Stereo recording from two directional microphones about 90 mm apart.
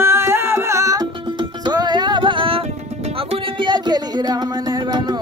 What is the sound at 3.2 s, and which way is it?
Music, 65° right (ahead or behind).